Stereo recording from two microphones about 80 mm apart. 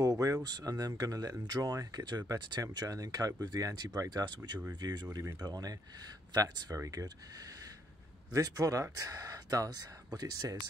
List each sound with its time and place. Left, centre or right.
0.0 s speech: right